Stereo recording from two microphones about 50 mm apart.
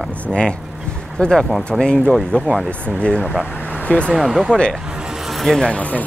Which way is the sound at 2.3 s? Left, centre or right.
Left.